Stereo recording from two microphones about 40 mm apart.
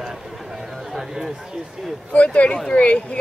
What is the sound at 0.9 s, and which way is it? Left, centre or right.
Speech, centre.